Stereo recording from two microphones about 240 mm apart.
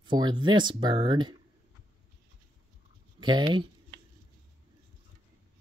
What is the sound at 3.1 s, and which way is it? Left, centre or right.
Speech, centre.